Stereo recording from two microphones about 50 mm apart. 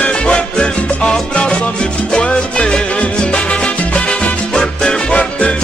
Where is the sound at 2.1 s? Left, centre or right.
Centre.